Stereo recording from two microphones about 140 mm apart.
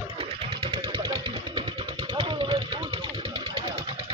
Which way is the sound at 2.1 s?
35° right (ahead or behind).